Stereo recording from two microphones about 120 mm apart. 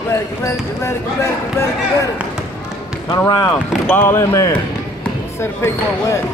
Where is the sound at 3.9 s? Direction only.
20° left (ahead or behind).